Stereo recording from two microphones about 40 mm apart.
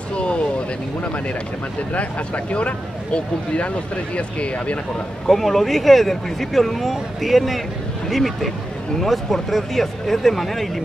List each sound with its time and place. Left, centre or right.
0.1 s vehicle: left
1.0 s speech: left
5.3 s speech: centre